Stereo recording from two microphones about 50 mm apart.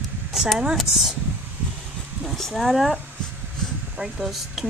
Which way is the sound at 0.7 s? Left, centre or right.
Centre.